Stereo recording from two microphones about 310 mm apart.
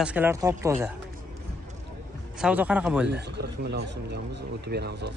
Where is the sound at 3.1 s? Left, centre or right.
Right.